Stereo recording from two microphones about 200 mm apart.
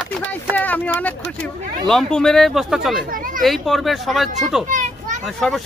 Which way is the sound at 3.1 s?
45° right (ahead or behind).